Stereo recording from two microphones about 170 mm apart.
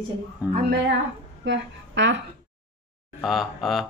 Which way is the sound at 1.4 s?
90° right.